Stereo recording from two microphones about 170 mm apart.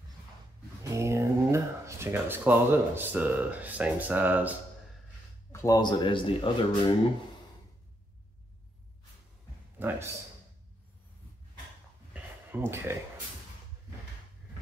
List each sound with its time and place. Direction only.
0.8 s speech: 15° right (ahead or behind)
5.5 s speech: 20° left (ahead or behind)
9.8 s a man's voice: 10° right (ahead or behind)
12.1 s a sound: 10° right (ahead or behind)